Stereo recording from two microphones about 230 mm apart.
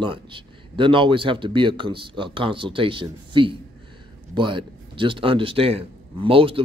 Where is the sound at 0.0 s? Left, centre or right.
Right.